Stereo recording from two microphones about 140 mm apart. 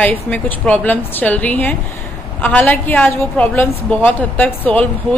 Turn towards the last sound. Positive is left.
turn(degrees=10)  # may be behind; listen again after turning